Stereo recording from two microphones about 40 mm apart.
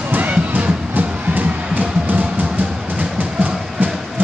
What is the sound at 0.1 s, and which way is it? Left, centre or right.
Music, right.